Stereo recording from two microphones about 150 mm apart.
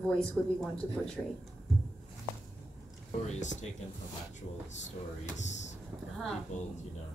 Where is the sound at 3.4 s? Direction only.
55° left (ahead or behind).